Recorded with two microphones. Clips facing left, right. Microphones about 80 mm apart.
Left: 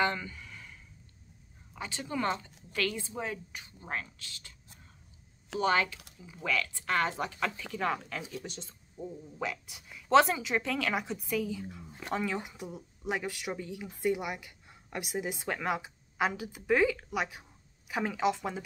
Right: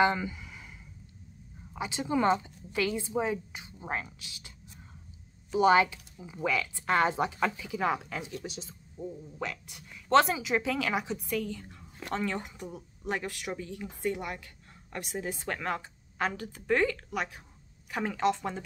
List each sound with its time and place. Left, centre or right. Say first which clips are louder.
0.0 s a sound: right 5 dB; centre
1.7 s a woman's voice: right 6 dB; centre
5.6 s a woman's voice: right 6 dB; centre